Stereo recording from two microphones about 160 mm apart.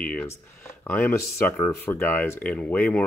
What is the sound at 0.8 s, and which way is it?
Speech, 10° left (ahead or behind).